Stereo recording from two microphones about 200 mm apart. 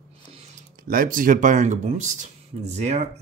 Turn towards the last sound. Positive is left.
turn(degrees=-35)  # may be behind; listen again after turning